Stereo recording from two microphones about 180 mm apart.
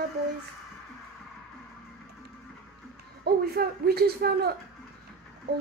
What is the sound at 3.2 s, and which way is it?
Speech, 60° right (ahead or behind).